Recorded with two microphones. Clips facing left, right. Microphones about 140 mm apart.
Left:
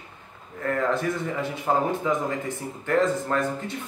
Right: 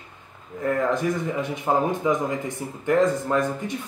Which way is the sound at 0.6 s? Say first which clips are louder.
Right 2 dB; 15° right (ahead or behind).